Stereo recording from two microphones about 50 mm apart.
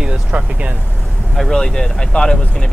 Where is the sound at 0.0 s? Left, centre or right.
Right.